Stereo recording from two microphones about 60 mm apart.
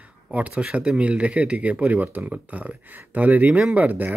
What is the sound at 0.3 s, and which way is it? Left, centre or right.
Speech, right.